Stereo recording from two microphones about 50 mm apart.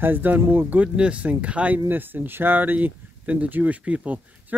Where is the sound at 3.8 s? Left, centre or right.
Right.